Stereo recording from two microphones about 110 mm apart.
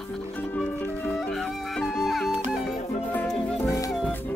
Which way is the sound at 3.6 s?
30° left (ahead or behind).